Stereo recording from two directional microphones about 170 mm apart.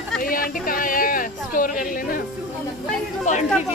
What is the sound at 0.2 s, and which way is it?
Speech, 55° left (ahead or behind).